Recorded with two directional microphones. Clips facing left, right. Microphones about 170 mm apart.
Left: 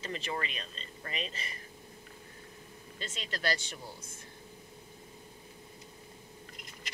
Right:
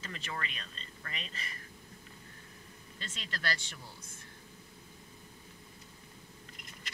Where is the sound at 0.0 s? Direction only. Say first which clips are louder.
Left 5 dB; 20° left (ahead or behind).